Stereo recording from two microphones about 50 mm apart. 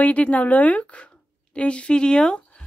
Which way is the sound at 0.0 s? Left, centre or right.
Left.